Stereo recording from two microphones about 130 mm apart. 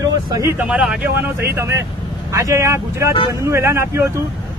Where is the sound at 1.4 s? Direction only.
20° right (ahead or behind).